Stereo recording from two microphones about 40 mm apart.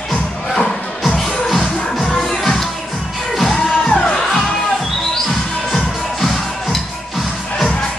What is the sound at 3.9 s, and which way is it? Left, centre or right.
Music, left.